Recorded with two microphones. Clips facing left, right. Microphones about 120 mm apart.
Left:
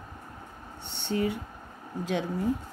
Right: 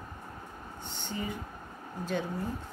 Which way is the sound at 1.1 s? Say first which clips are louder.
Left 9 dB; 70° left (ahead or behind).